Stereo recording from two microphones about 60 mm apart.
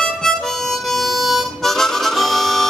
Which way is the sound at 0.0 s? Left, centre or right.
Centre.